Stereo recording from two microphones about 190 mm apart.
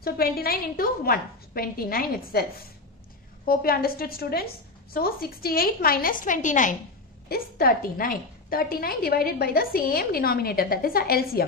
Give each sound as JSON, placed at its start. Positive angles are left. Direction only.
{"t": 0.0, "sound": "a woman's voice", "side_deg": 50}
{"t": 7.2, "sound": "a woman's voice", "side_deg": 55}